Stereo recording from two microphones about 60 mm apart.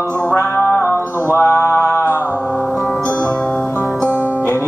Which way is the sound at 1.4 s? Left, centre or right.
Left.